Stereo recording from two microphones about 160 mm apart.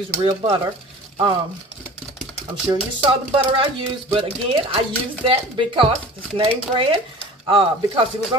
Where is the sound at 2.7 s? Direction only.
20° right (ahead or behind).